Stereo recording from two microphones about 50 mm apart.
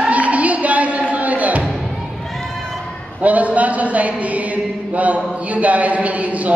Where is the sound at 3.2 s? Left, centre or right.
Right.